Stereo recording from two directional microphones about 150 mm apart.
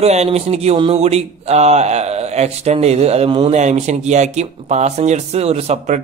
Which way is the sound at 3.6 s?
50° right (ahead or behind).